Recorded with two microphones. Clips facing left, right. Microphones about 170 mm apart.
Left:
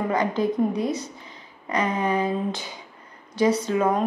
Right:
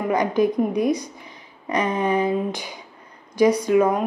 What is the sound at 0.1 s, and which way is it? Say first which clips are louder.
A woman's voice: right 6 dB; 15° right (ahead or behind).